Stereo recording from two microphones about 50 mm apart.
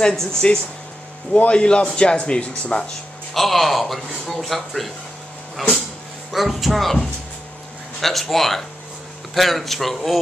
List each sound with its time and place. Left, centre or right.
0.1 s speech: centre
3.3 s speech: centre